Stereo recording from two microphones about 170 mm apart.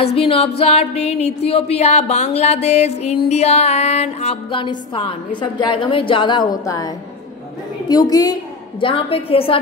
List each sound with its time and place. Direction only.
0.0 s music: 35° left (ahead or behind)
7.9 s a woman's voice: 20° left (ahead or behind)
8.8 s music: 30° left (ahead or behind)